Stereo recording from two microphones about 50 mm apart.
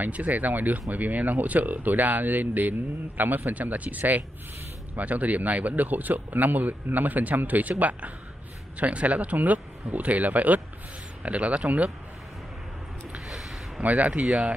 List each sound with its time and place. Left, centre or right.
0.0 s speech: right
8.7 s speech: right
13.3 s a sound: centre
13.8 s speech: right